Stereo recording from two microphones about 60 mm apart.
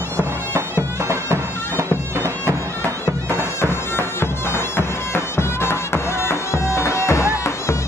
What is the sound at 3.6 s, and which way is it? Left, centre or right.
Bagpipes, left.